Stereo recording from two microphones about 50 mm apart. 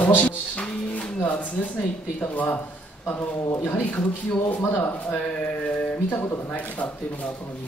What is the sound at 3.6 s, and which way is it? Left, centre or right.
Speech, left.